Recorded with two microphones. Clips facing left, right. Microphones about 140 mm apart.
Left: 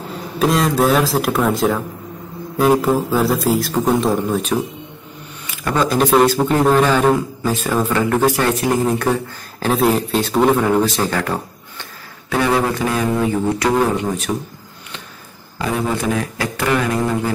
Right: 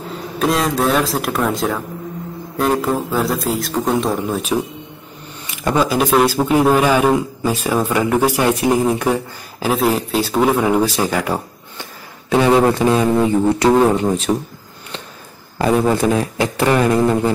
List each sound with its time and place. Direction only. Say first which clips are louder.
0.4 s a man's voice: left 2 dB; centre (ahead or behind)
5.8 s a man's voice: left 1 dB; 5° right (ahead or behind); by 14.3 s 25° right (ahead or behind)
15.6 s speech: right 5 dB; 35° right (ahead or behind)